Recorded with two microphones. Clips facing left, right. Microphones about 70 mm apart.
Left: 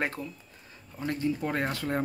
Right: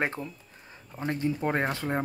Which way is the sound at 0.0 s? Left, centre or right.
Right.